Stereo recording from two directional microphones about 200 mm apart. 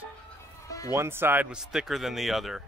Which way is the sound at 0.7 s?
15° left (ahead or behind).